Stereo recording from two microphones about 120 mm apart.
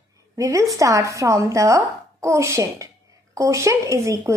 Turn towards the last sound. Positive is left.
turn(degrees=-25)  # may be behind; listen again after turning